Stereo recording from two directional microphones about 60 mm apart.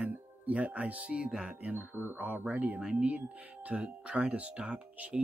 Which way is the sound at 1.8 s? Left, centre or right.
Right.